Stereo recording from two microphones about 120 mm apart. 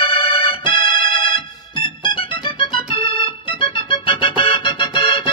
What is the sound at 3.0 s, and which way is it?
Keyboard, 45° left (ahead or behind).